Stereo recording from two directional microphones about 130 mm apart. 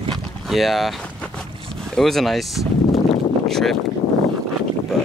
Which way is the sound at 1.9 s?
Centre (ahead or behind).